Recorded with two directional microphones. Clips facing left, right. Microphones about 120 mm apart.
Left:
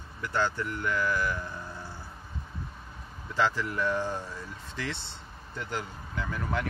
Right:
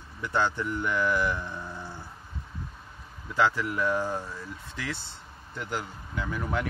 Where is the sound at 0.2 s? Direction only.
20° right (ahead or behind).